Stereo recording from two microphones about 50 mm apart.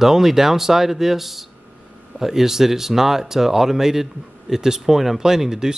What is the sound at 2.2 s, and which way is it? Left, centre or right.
Speech, centre.